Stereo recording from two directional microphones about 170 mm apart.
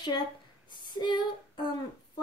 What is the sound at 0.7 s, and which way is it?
Female singing, 25° left (ahead or behind).